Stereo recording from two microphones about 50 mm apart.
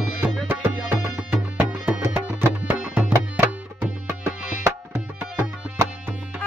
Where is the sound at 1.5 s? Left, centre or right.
Right.